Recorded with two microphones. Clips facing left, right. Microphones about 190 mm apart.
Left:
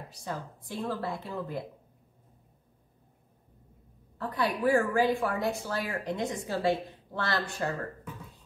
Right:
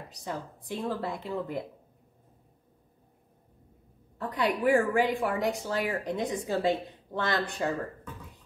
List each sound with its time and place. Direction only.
0.1 s a woman's voice: 20° right (ahead or behind)
4.2 s a woman's voice: 15° right (ahead or behind)